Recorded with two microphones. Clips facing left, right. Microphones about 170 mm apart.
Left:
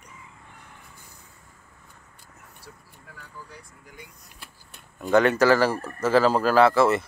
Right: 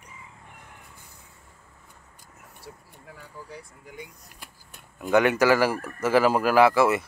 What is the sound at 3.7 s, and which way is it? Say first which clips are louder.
Speech: right 5 dB; 20° right (ahead or behind).